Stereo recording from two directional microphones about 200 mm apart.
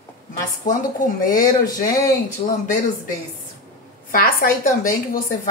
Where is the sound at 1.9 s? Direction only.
15° left (ahead or behind).